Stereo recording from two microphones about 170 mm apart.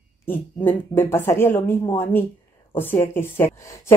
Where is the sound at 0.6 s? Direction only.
10° left (ahead or behind).